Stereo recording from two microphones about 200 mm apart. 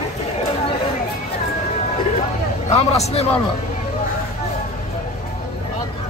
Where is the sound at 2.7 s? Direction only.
30° left (ahead or behind).